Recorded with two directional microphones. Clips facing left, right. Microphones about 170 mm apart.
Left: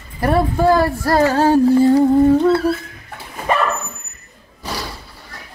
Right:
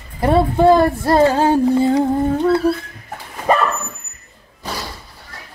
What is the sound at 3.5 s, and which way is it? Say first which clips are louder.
Dog: right 2 dB; 40° right (ahead or behind).